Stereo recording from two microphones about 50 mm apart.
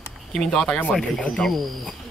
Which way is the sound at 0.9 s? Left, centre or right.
Centre.